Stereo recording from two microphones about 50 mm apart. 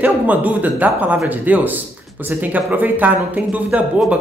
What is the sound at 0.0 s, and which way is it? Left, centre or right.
Speech, right.